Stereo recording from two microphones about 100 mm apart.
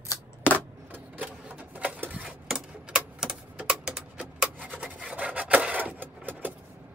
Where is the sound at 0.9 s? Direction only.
15° right (ahead or behind).